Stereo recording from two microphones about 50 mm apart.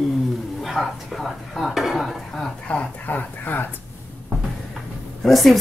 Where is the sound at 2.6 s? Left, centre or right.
Left.